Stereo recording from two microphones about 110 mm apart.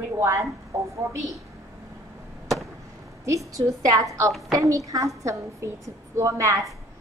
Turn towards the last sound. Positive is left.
turn(degrees=-30)  # may be behind; listen again after turning